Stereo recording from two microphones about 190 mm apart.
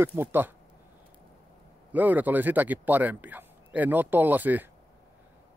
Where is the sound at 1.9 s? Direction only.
10° right (ahead or behind).